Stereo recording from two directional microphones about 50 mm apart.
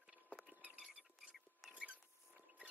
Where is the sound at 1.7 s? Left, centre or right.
Right.